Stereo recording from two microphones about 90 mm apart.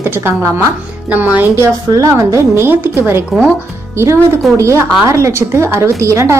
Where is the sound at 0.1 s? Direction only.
25° right (ahead or behind).